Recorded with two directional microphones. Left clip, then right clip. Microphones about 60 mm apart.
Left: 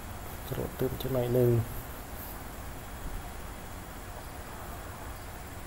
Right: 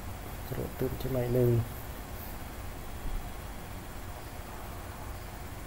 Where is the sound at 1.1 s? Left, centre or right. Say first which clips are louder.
Left 2 dB; centre.